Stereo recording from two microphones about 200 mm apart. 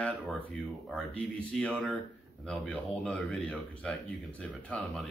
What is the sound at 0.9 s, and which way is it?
Speech, 5° left (ahead or behind).